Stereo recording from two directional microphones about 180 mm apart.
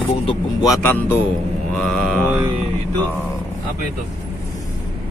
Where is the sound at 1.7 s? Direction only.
5° left (ahead or behind).